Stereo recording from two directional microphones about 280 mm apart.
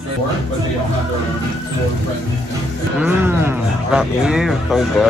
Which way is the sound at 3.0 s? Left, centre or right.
Centre.